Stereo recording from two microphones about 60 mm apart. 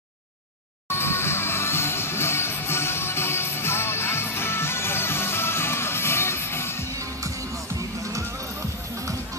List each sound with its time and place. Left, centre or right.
0.8 s music: left